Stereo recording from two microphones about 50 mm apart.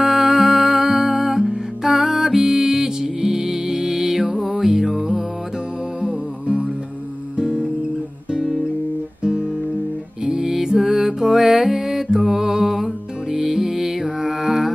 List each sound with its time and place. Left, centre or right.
0.0 s music: centre
8.3 s guitar: centre
10.2 s music: centre